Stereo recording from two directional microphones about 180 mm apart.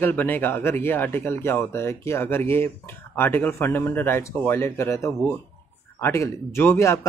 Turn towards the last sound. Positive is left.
turn(degrees=15)  # may be behind; listen again after turning